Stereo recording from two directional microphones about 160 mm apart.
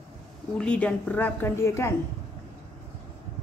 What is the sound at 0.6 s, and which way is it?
A woman's voice, 5° left (ahead or behind).